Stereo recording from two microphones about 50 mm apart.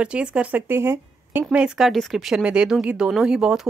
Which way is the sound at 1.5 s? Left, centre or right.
Centre.